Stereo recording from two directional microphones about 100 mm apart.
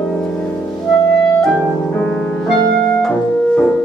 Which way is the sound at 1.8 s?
15° left (ahead or behind).